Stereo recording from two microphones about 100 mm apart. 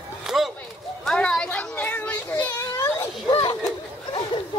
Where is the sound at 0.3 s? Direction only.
5° right (ahead or behind).